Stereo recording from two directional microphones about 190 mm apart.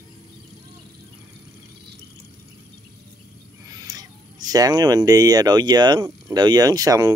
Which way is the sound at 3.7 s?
20° right (ahead or behind).